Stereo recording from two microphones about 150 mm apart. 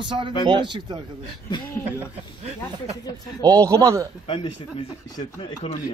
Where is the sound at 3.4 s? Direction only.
25° right (ahead or behind).